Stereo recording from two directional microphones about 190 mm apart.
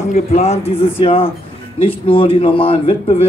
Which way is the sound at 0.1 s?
35° left (ahead or behind).